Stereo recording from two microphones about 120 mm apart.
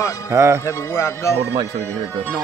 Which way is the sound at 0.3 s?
20° right (ahead or behind).